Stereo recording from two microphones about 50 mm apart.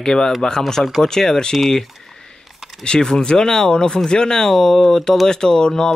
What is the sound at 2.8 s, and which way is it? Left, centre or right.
Speech, centre.